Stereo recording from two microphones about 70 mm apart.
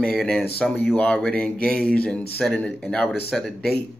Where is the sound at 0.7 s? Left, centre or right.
Centre.